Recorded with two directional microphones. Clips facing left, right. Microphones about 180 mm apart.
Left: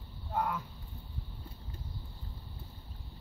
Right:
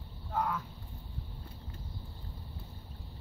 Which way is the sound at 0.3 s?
15° left (ahead or behind).